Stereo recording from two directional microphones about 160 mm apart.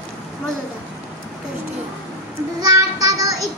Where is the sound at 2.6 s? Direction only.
20° right (ahead or behind).